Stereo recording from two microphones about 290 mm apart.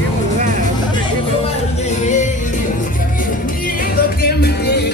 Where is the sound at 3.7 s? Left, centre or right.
Left.